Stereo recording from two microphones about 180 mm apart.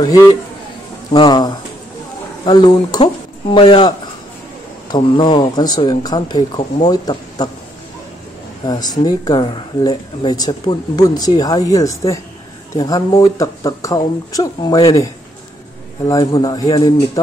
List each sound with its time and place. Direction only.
0.0 s speech: 20° left (ahead or behind)
8.6 s speech: 20° left (ahead or behind)
16.1 s speech: 25° left (ahead or behind)